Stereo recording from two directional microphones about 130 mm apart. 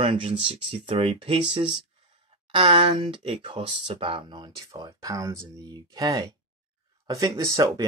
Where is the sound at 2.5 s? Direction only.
40° right (ahead or behind).